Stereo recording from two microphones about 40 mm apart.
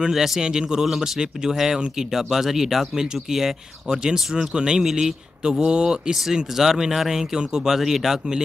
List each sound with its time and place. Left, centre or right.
0.1 s speech: centre
0.4 s speech: centre